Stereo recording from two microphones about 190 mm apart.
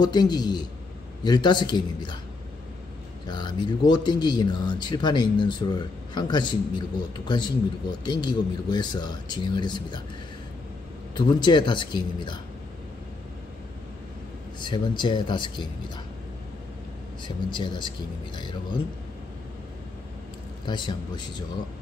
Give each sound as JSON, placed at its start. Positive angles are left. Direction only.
{"t": 0.0, "sound": "speech", "side_deg": 20}
{"t": 3.3, "sound": "speech", "side_deg": 25}
{"t": 11.1, "sound": "speech", "side_deg": 25}
{"t": 14.6, "sound": "speech", "side_deg": 25}
{"t": 17.5, "sound": "speech", "side_deg": 25}
{"t": 20.6, "sound": "speech", "side_deg": 25}